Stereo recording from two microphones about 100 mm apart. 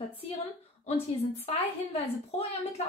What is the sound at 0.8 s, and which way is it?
Speech, 90° left.